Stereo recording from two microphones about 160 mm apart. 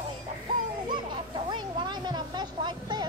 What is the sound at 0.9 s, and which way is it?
Children playing, 30° right (ahead or behind).